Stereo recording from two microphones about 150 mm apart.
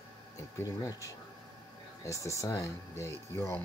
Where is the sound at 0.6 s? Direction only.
20° left (ahead or behind).